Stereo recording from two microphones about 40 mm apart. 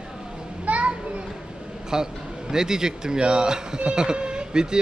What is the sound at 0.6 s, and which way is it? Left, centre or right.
Children playing, right.